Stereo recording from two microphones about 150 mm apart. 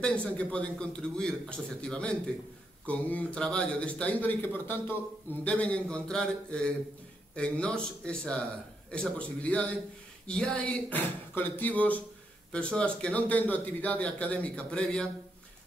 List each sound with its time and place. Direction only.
0.0 s a man's voice: 5° left (ahead or behind)